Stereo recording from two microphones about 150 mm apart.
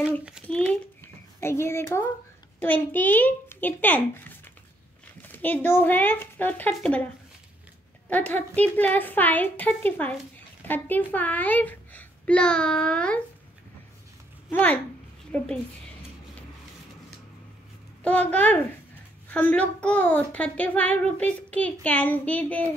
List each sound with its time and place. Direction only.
0.0 s a child's voice: 5° right (ahead or behind)
0.5 s a child's voice: 5° left (ahead or behind)
1.0 s a sound: 15° left (ahead or behind)
2.6 s a child's voice: 10° left (ahead or behind)
5.2 s a child's voice: 10° left (ahead or behind)
8.1 s a child's voice: 10° left (ahead or behind)
14.5 s a child's voice: 10° left (ahead or behind)
18.0 s a child's voice: 10° left (ahead or behind)